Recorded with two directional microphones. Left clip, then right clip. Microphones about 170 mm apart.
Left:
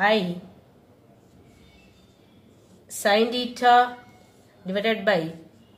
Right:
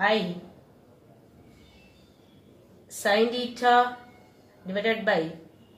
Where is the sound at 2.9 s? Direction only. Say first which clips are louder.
Left 2 dB; 45° left (ahead or behind).